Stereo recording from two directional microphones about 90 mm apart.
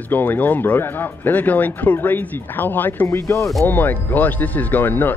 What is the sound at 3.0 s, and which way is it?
Speech, 35° left (ahead or behind).